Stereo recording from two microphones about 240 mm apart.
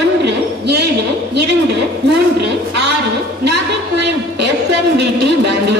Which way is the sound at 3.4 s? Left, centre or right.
Right.